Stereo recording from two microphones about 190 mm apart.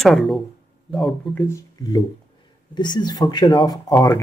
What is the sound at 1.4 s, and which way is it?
Speech, 15° left (ahead or behind).